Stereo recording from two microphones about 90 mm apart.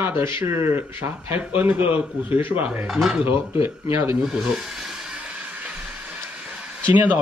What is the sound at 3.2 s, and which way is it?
Speech, 25° right (ahead or behind).